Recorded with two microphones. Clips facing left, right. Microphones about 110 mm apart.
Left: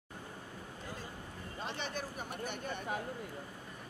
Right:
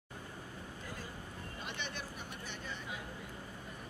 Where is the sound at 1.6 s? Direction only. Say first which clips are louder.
Left 5 dB; 35° left (ahead or behind); by 3.0 s 50° left (ahead or behind).